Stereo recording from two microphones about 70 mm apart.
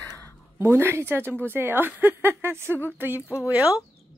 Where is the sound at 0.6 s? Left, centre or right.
Right.